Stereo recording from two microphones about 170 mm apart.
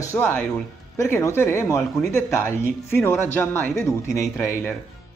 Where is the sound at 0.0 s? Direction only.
15° left (ahead or behind).